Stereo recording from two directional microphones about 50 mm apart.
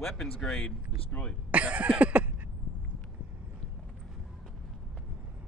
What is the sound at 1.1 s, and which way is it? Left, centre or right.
Speech, left.